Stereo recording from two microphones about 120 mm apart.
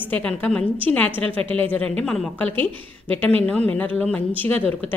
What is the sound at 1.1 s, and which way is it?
Speech, 50° right (ahead or behind).